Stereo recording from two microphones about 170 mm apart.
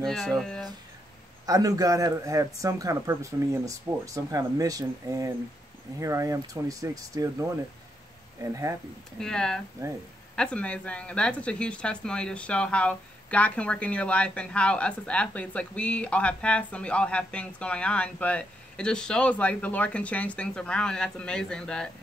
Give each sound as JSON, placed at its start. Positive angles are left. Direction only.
{"t": 0.0, "sound": "speech", "side_deg": 0}
{"t": 1.4, "sound": "a man's voice", "side_deg": -20}
{"t": 9.2, "sound": "speech", "side_deg": 5}
{"t": 9.8, "sound": "a man's voice", "side_deg": -20}
{"t": 10.3, "sound": "speech", "side_deg": 5}